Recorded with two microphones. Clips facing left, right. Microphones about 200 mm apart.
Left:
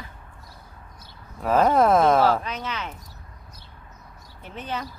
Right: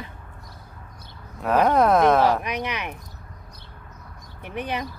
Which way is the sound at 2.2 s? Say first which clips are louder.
Right 1 dB; 15° right (ahead or behind).